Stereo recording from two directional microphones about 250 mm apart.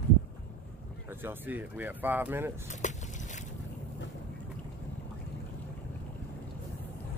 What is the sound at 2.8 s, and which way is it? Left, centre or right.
Boat, left.